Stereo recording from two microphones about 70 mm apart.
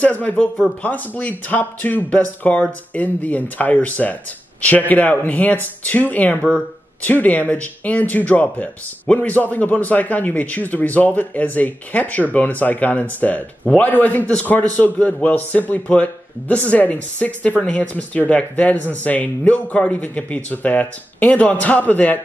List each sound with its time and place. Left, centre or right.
0.0 s speech: left